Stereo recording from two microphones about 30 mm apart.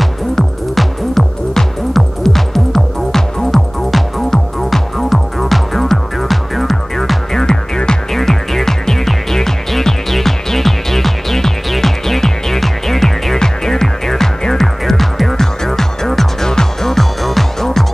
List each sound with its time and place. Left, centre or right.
0.7 s music: centre
7.3 s music: left
8.1 s music: centre
14.6 s throbbing: centre
15.3 s music: centre
16.9 s music: centre